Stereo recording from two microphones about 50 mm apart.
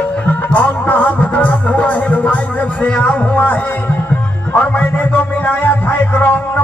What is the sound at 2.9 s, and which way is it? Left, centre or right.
Speech, left.